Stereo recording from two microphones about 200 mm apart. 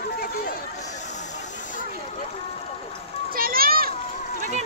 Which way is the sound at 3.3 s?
45° right (ahead or behind).